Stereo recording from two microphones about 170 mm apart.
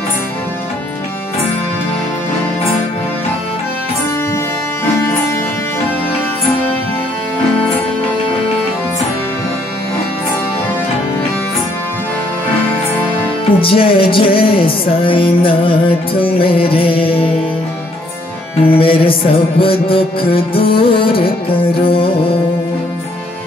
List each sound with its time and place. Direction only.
13.6 s music: 30° left (ahead or behind)
18.7 s music: 30° left (ahead or behind)